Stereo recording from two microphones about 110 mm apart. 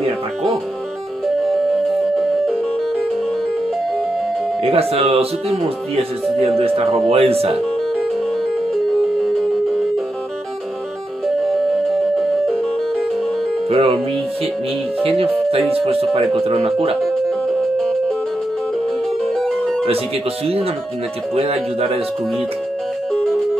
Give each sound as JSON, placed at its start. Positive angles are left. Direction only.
{"t": 1.2, "sound": "music", "side_deg": 0}
{"t": 4.6, "sound": "speech", "side_deg": -60}
{"t": 11.2, "sound": "music", "side_deg": 0}
{"t": 13.7, "sound": "speech", "side_deg": -60}
{"t": 15.8, "sound": "speech", "side_deg": -60}
{"t": 19.3, "sound": "music", "side_deg": 5}
{"t": 21.4, "sound": "speech", "side_deg": -65}